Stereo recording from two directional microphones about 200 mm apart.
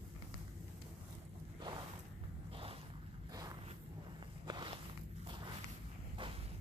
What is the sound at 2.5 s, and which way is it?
Boat, 25° right (ahead or behind).